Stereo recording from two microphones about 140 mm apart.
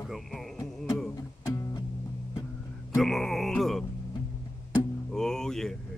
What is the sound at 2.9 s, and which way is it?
Music, centre (ahead or behind).